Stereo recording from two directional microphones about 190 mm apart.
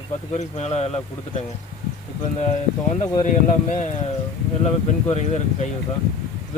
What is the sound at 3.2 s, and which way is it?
Speech, 40° left (ahead or behind).